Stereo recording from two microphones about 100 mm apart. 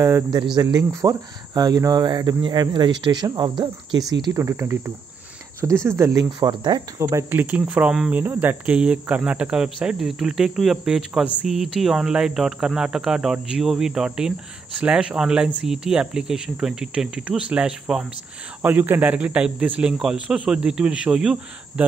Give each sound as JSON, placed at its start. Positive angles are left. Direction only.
{"t": 0.6, "sound": "speech", "side_deg": -40}
{"t": 4.3, "sound": "speech", "side_deg": -25}
{"t": 7.0, "sound": "speech", "side_deg": -30}
{"t": 18.6, "sound": "speech", "side_deg": -20}